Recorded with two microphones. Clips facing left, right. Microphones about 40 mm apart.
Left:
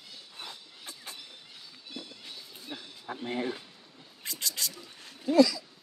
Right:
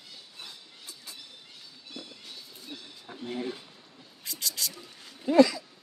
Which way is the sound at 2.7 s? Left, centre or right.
Left.